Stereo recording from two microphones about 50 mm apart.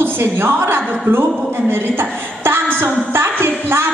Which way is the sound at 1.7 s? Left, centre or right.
Right.